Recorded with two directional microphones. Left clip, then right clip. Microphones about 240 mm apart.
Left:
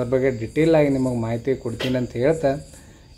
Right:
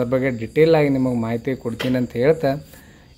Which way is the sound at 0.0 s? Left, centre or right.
Right.